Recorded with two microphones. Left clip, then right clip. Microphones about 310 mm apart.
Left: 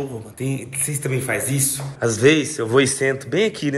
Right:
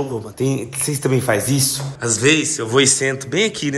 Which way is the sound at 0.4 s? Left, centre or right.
Centre.